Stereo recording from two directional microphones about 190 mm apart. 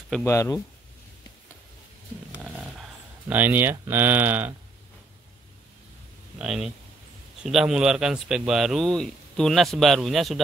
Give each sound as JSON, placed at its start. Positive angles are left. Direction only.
{"t": 0.2, "sound": "speech", "side_deg": 15}
{"t": 3.3, "sound": "speech", "side_deg": -10}
{"t": 6.3, "sound": "speech", "side_deg": -5}